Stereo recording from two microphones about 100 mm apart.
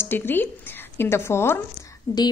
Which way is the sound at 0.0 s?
20° left (ahead or behind).